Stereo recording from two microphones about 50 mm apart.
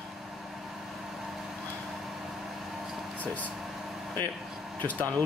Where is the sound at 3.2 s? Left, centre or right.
Left.